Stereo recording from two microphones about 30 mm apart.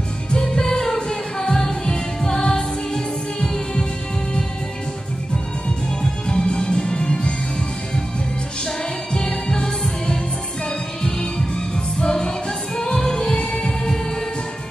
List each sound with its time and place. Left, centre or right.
0.6 s music: centre
6.2 s music: left
8.6 s music: left